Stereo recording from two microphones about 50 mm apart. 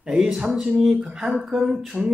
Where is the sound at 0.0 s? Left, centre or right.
Centre.